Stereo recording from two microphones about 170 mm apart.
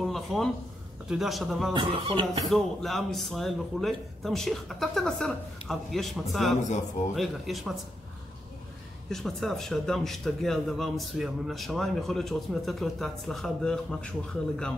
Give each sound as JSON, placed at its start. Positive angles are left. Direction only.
{"t": 0.0, "sound": "a sound", "side_deg": 0}
{"t": 1.0, "sound": "a man's voice", "side_deg": 0}
{"t": 1.7, "sound": "speech", "side_deg": -30}
{"t": 2.4, "sound": "a man's voice", "side_deg": 0}
{"t": 9.1, "sound": "a man's voice", "side_deg": 0}